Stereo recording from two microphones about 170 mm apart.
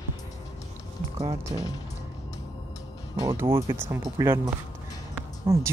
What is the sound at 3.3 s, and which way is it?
Speech, 15° right (ahead or behind).